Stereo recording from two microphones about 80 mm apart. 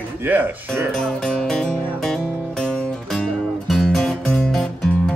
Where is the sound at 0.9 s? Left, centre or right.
Centre.